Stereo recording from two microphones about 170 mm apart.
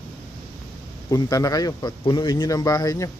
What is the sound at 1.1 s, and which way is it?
A man's voice, 20° left (ahead or behind).